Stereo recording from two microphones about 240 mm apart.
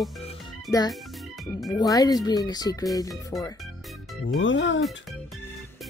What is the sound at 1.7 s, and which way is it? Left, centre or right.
Speech, centre.